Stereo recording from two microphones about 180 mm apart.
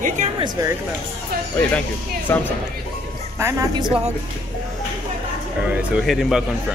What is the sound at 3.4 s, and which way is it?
Speech, 15° right (ahead or behind).